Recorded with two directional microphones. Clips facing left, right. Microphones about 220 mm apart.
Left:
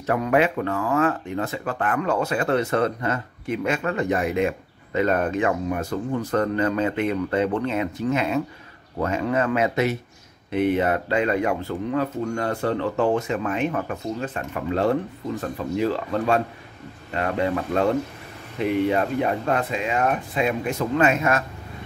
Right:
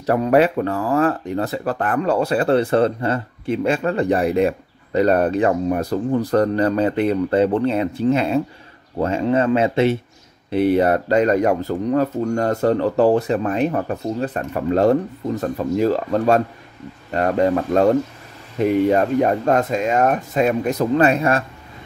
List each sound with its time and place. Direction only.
0.0 s speech: 35° right (ahead or behind)